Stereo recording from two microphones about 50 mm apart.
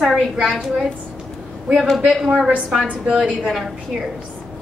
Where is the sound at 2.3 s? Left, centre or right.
Centre.